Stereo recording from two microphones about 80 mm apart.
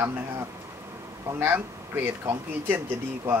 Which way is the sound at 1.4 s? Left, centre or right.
Right.